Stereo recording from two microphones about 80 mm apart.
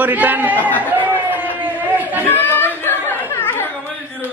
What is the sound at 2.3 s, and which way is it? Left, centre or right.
Chatter, left.